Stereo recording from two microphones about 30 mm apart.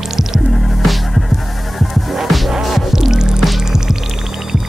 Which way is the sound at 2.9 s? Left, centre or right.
Centre.